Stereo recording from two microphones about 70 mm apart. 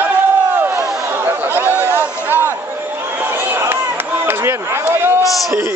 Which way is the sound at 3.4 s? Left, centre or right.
Right.